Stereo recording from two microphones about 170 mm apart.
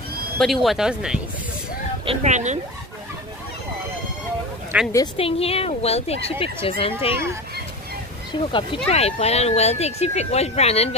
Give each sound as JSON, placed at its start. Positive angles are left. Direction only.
{"t": 0.4, "sound": "speech", "side_deg": 0}
{"t": 2.0, "sound": "speech", "side_deg": -45}
{"t": 4.7, "sound": "speech", "side_deg": -10}
{"t": 5.1, "sound": "speech", "side_deg": 35}
{"t": 8.3, "sound": "speech", "side_deg": 30}